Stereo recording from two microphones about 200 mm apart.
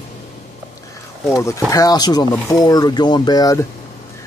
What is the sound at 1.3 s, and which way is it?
Speech, 15° left (ahead or behind).